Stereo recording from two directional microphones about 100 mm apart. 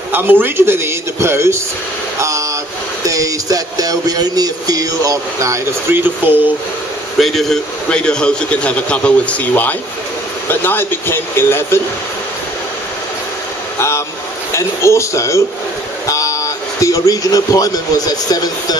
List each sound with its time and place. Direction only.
0.1 s a man's voice: 20° right (ahead or behind)
2.1 s a sound: 30° right (ahead or behind)
3.1 s music: 35° right (ahead or behind); by 6.5 s 20° right (ahead or behind)
7.2 s a man's voice: centre (ahead or behind); by 11.8 s 25° left (ahead or behind)
13.7 s a sound: 30° left (ahead or behind)
14.5 s speech: 30° left (ahead or behind)